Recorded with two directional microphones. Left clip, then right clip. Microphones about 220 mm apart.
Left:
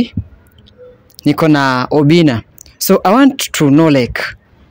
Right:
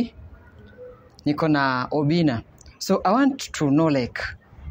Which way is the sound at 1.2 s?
50° left (ahead or behind).